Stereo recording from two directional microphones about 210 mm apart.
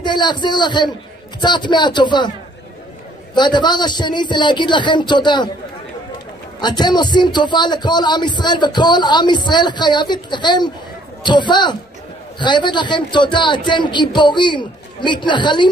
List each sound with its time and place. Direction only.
0.0 s a man's voice: 20° left (ahead or behind)
3.3 s a man's voice: 20° left (ahead or behind)
6.6 s a man's voice: 20° left (ahead or behind)